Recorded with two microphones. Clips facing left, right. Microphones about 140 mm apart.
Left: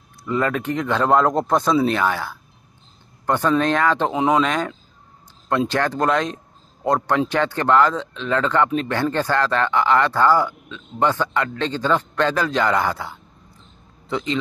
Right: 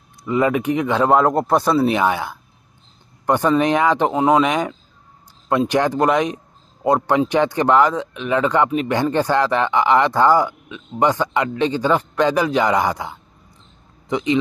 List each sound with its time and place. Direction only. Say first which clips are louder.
0.2 s a man's voice: right 4 dB; 15° right (ahead or behind)